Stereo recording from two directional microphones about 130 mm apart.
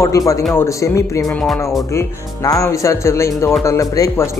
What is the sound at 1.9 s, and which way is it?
Speech, 25° left (ahead or behind).